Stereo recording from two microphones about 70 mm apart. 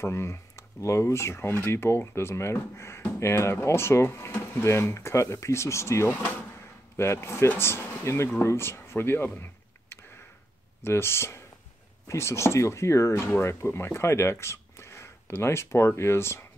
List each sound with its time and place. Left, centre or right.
0.0 s speech: left
10.8 s speech: left